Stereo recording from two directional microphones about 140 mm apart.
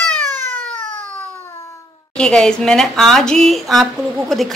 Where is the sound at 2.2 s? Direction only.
5° left (ahead or behind).